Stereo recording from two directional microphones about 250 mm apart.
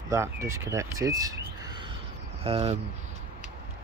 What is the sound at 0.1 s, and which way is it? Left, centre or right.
Speech, centre.